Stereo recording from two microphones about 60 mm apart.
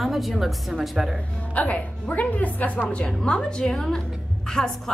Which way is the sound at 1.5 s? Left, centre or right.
Left.